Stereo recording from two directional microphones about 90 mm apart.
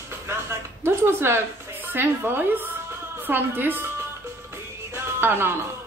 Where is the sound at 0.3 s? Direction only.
30° right (ahead or behind).